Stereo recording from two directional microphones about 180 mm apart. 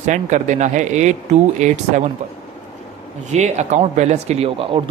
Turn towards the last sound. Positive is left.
turn(degrees=-35)  # may be behind; listen again after turning